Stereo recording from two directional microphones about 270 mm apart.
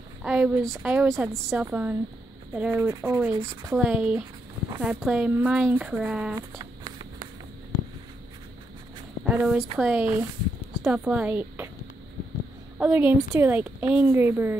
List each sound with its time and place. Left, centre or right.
0.2 s a woman's voice: centre
6.6 s a sound: centre
9.2 s a woman's voice: centre
12.7 s a woman's voice: centre